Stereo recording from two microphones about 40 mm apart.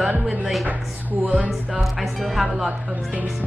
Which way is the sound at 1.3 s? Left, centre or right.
Right.